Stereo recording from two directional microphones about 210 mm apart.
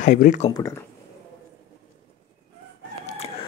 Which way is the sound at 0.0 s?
40° left (ahead or behind).